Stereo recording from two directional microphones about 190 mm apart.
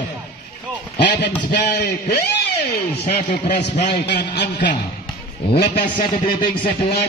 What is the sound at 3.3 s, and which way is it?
A man's voice, 60° left (ahead or behind).